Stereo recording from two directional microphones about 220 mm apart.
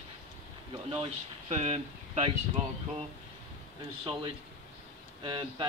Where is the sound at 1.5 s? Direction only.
30° right (ahead or behind).